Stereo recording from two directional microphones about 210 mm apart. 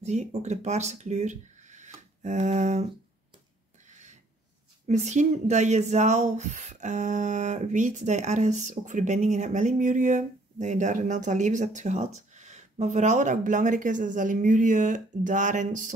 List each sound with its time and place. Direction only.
0.0 s speech: 30° right (ahead or behind)
3.9 s a sound: 35° right (ahead or behind)
4.8 s speech: 30° right (ahead or behind)